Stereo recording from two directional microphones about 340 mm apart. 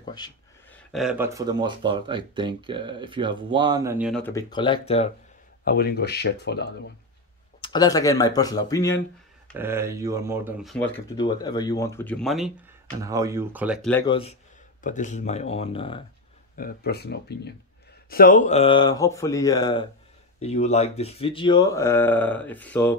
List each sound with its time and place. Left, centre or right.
0.0 s a sound: centre
0.9 s speech: centre
5.7 s speech: left
7.6 s speech: centre
9.5 s speech: centre
11.1 s speech: centre
16.5 s speech: left; by 22.9 s centre